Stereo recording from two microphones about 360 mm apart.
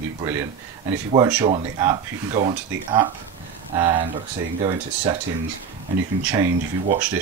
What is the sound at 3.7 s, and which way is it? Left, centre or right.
Speech, centre.